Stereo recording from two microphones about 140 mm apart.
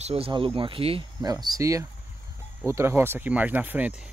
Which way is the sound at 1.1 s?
30° right (ahead or behind).